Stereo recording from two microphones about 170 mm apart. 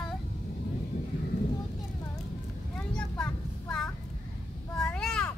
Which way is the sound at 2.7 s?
5° left (ahead or behind).